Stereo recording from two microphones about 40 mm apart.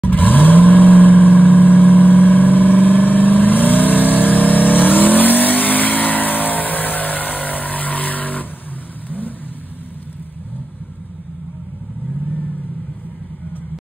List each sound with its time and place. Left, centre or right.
0.0 s vehicle: left